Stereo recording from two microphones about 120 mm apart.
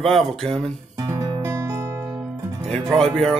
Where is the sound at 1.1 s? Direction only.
25° right (ahead or behind).